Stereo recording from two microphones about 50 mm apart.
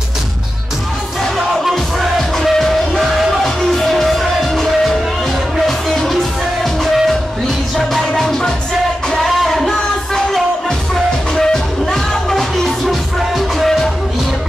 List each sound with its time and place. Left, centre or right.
1.2 s music: centre